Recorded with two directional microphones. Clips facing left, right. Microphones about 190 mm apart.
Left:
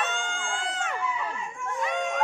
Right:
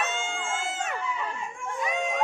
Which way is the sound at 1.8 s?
Centre (ahead or behind).